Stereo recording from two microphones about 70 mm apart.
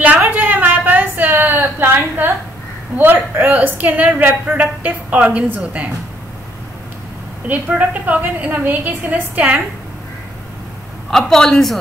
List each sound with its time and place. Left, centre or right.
0.3 s a sound: right
3.0 s a woman's voice: right
7.4 s a woman's voice: right
11.1 s a man's voice: centre